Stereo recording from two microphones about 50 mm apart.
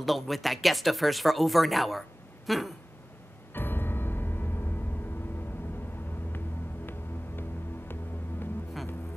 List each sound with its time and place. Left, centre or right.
0.0 s speech: centre
3.5 s music: left